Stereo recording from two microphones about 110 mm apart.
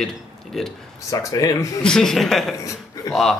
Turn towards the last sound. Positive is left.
turn(degrees=30)  # may be behind; listen again after turning